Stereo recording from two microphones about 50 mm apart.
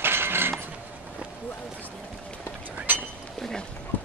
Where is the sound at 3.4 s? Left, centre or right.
Centre.